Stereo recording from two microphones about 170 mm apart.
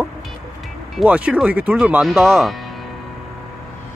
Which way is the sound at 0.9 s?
5° right (ahead or behind).